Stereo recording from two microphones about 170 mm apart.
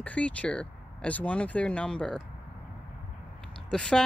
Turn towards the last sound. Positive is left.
turn(degrees=5)  # may be behind; listen again after turning